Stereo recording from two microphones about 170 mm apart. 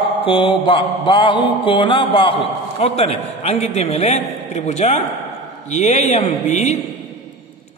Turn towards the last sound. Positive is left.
turn(degrees=40)  # may be behind; listen again after turning